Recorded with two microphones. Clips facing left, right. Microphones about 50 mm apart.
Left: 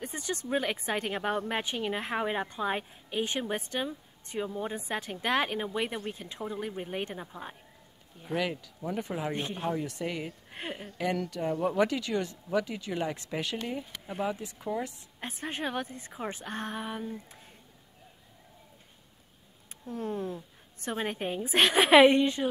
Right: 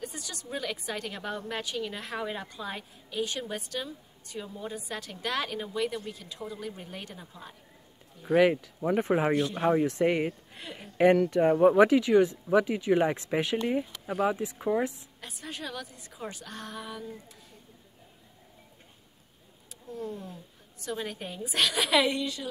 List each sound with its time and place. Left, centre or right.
0.0 s a woman's voice: left
8.3 s speech: right
9.3 s a woman's voice: left
9.6 s speech: right
10.5 s speech: left
11.2 s speech: right
15.1 s a woman's voice: left
19.9 s a woman's voice: left
20.8 s a woman's voice: left